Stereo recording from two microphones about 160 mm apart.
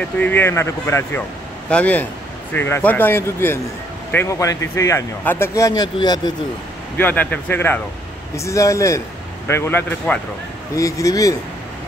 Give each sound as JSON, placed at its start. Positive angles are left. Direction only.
{"t": 0.2, "sound": "a man's voice", "side_deg": 15}
{"t": 7.0, "sound": "a man's voice", "side_deg": 10}
{"t": 10.8, "sound": "a man's voice", "side_deg": 20}